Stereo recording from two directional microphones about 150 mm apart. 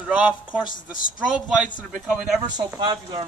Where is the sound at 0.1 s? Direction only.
10° right (ahead or behind).